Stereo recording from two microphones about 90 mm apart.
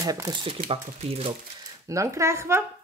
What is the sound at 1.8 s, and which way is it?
Speech, 35° right (ahead or behind).